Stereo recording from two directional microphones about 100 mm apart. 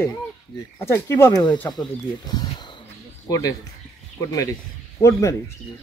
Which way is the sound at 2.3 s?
45° left (ahead or behind).